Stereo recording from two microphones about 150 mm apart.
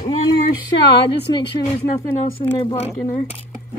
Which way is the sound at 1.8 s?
75° left (ahead or behind).